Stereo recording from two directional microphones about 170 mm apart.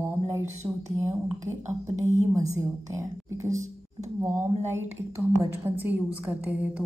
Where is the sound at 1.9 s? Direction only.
45° right (ahead or behind).